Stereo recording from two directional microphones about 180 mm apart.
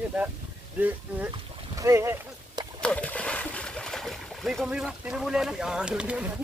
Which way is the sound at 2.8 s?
5° left (ahead or behind).